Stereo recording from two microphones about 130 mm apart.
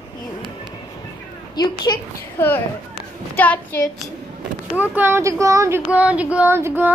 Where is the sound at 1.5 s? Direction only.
35° left (ahead or behind).